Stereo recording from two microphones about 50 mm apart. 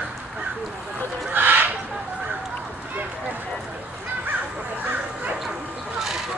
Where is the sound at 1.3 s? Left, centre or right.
Right.